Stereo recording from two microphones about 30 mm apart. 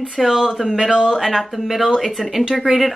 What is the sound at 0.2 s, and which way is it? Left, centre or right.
Speech, centre.